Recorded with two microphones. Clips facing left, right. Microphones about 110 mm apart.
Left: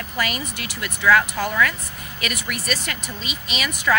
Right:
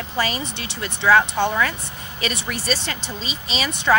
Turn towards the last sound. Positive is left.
turn(degrees=-30)  # may be behind; listen again after turning